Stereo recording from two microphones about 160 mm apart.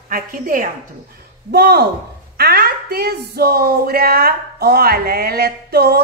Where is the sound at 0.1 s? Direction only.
60° right (ahead or behind).